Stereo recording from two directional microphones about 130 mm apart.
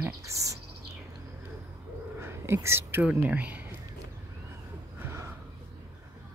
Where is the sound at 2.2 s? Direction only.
20° right (ahead or behind).